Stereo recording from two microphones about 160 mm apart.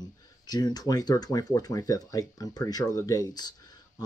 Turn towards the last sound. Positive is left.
turn(degrees=25)  # may be behind; listen again after turning